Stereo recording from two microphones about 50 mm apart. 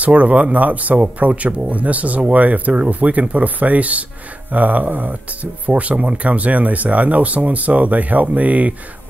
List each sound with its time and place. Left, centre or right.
0.0 s speech: right